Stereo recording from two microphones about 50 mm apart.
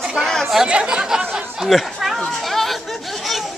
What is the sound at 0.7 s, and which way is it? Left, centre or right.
Speech, centre.